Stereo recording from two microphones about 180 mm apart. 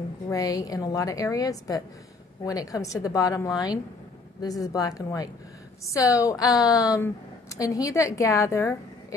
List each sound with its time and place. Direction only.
0.3 s a woman's voice: 20° left (ahead or behind)